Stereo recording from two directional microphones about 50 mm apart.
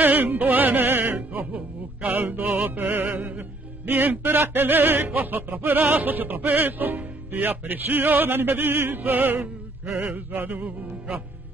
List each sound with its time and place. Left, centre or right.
0.0 s music: right
9.0 s music: right